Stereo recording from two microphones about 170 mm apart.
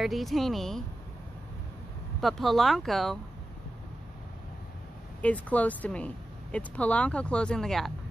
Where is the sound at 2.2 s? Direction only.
Centre (ahead or behind).